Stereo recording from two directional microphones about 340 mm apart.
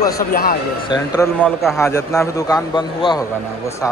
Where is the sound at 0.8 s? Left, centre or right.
Centre.